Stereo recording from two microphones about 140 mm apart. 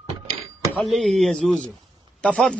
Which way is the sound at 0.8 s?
Centre (ahead or behind).